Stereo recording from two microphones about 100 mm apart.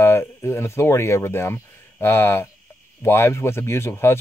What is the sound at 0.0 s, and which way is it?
Speech, 25° left (ahead or behind).